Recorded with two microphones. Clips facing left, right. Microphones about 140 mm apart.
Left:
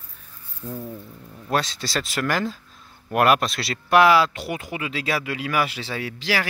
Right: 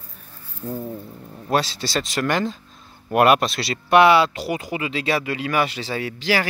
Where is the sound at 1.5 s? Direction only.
Centre (ahead or behind).